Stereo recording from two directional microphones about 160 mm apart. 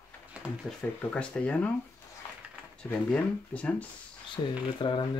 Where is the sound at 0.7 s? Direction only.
Centre (ahead or behind).